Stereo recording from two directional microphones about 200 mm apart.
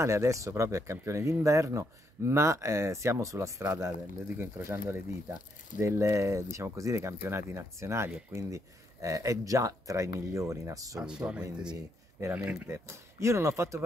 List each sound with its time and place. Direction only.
0.0 s speech: 15° right (ahead or behind)
11.1 s speech: 5° right (ahead or behind)